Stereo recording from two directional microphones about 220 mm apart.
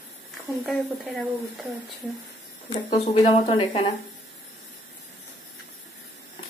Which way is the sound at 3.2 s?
30° left (ahead or behind).